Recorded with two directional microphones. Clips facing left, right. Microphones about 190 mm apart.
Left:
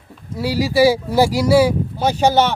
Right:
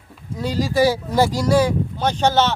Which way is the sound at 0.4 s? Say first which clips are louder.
Left 3 dB; 10° left (ahead or behind).